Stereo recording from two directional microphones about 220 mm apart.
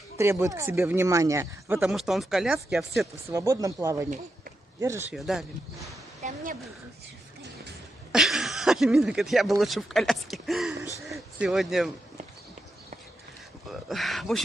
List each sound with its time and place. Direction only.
0.2 s speech: 15° right (ahead or behind)
3.3 s speech: 15° right (ahead or behind)
5.1 s speech: centre (ahead or behind)
6.2 s speech: 35° right (ahead or behind)
8.1 s speech: centre (ahead or behind)
13.7 s speech: centre (ahead or behind)